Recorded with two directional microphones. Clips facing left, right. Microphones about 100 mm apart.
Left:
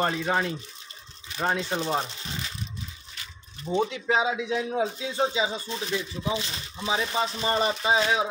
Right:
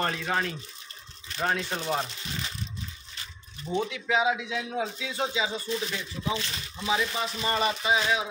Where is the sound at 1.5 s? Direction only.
20° left (ahead or behind).